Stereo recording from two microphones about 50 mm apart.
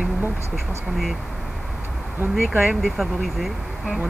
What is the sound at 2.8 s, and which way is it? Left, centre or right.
Speech, centre.